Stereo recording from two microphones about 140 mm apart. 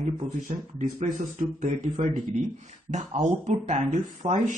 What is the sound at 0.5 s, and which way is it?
Speech, 65° right (ahead or behind).